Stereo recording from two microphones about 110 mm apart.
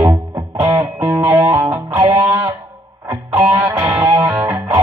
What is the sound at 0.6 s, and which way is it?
Music, 30° right (ahead or behind).